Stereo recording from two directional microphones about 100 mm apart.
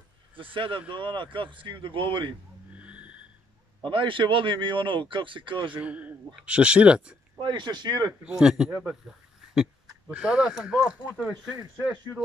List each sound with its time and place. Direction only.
0.4 s speech: 60° right (ahead or behind)
2.7 s vehicle: 15° right (ahead or behind)
3.8 s speech: 55° right (ahead or behind)
5.8 s speech: 15° right (ahead or behind)
7.3 s speech: 50° right (ahead or behind)
8.2 s speech: 10° right (ahead or behind)
10.1 s speech: 10° right (ahead or behind)